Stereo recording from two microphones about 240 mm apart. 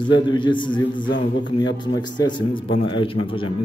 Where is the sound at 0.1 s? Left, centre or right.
Centre.